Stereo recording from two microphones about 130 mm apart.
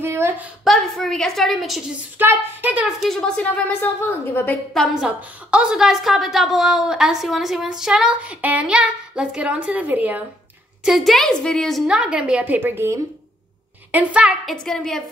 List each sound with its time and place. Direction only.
0.0 s a sound: 20° right (ahead or behind)
0.7 s a woman's voice: centre (ahead or behind)
2.1 s a woman's voice: 15° right (ahead or behind)
3.0 s a woman's voice: 5° left (ahead or behind)
4.7 s a woman's voice: 5° right (ahead or behind)
13.9 s a woman's voice: 10° right (ahead or behind)
14.5 s a woman's voice: 5° left (ahead or behind)